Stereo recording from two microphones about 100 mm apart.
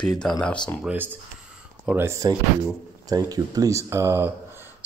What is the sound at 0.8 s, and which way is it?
Speech, 15° right (ahead or behind).